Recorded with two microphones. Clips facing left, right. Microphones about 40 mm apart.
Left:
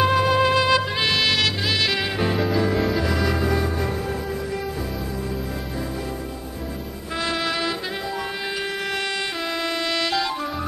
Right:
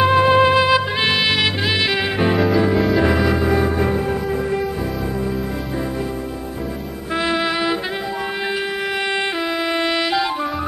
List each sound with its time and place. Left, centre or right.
0.0 s music: centre
2.3 s music: centre
3.0 s music: right
3.3 s music: centre
7.2 s music: centre
9.8 s music: centre